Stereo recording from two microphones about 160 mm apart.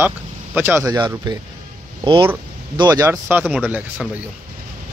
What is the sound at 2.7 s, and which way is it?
Speech, 25° right (ahead or behind).